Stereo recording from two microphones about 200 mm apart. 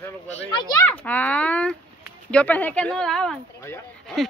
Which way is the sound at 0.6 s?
10° left (ahead or behind).